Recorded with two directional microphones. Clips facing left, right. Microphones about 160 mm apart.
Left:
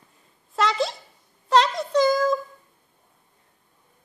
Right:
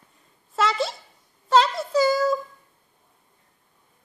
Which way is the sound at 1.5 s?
5° right (ahead or behind).